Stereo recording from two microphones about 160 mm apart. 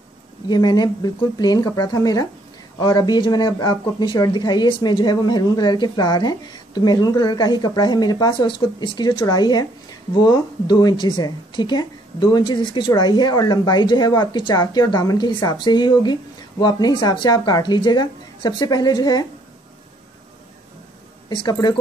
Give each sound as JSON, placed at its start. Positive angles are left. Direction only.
{"t": 0.5, "sound": "a woman's voice", "side_deg": 25}
{"t": 21.3, "sound": "a woman's voice", "side_deg": 25}